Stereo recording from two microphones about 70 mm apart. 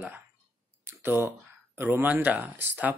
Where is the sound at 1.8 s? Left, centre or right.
Right.